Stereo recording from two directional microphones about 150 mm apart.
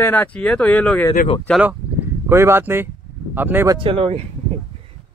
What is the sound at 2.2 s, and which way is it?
Speech, 15° right (ahead or behind).